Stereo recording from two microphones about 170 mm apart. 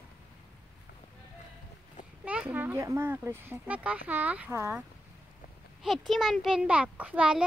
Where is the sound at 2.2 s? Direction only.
5° right (ahead or behind).